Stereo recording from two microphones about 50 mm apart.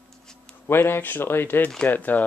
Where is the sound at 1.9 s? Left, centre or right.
Left.